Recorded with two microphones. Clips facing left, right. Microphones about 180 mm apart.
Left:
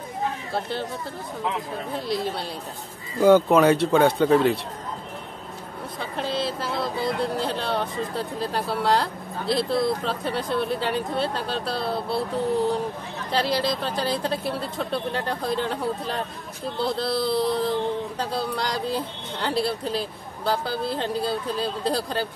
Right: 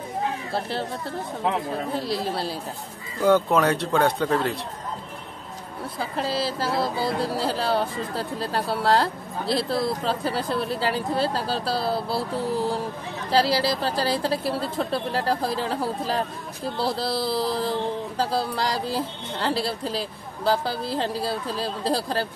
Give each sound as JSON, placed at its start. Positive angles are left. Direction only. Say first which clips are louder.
{"t": 0.5, "sound": "speech", "louder": "even", "side_deg": 0}
{"t": 2.0, "sound": "speech", "louder": "left 3 dB", "side_deg": 0}
{"t": 6.1, "sound": "speech", "louder": "even", "side_deg": 0}
{"t": 6.8, "sound": "speech", "louder": "left 1 dB", "side_deg": -30}
{"t": 7.2, "sound": "speech", "louder": "right 2 dB", "side_deg": -5}